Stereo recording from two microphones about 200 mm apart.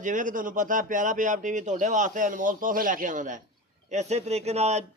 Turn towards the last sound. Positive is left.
turn(degrees=-35)  # may be behind; listen again after turning